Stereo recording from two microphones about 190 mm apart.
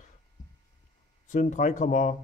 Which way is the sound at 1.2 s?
40° left (ahead or behind).